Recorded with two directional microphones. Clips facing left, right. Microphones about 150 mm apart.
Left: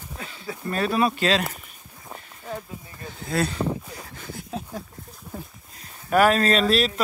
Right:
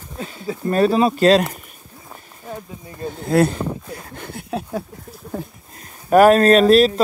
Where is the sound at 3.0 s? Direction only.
50° right (ahead or behind); by 4.8 s 70° right (ahead or behind).